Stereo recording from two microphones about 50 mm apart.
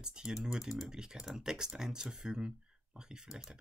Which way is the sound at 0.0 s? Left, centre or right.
Centre.